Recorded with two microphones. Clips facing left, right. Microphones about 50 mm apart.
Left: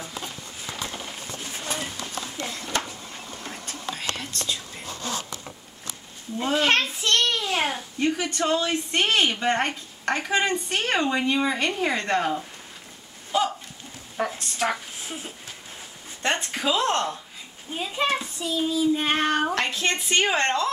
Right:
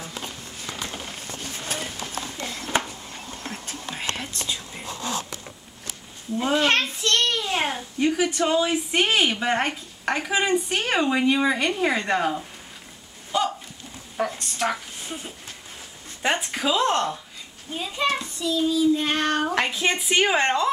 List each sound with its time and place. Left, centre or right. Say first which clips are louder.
0.8 s vehicle: even; centre
1.8 s a sound: right 1 dB; centre
3.6 s whispering: left 1 dB; right
6.3 s child singing: right 1 dB; centre
7.2 s a child's voice: even; centre
13.3 s a sound: even; centre
16.2 s a woman's voice: right 2 dB; centre
17.7 s a child's voice: right 1 dB; centre
18.4 s child singing: right 4 dB; left
19.5 s a woman's voice: right 2 dB; centre